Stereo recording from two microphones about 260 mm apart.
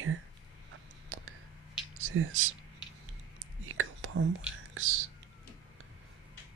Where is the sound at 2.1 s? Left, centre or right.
Right.